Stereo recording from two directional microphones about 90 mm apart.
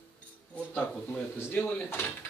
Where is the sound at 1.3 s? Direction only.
25° left (ahead or behind).